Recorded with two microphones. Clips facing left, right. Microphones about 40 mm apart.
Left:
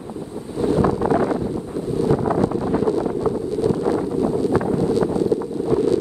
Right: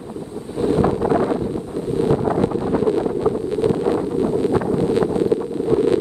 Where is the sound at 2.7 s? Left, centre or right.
Right.